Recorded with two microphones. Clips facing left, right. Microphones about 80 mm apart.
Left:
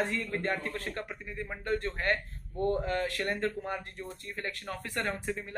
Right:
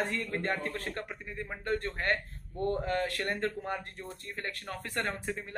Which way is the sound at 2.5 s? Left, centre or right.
Left.